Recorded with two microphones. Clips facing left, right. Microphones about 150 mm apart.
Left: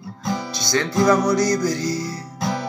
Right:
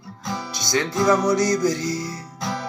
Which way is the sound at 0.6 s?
20° right (ahead or behind).